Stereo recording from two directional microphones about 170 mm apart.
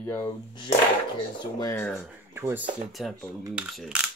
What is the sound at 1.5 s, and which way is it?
Speech, 15° left (ahead or behind).